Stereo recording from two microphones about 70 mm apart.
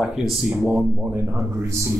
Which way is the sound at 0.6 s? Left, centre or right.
Right.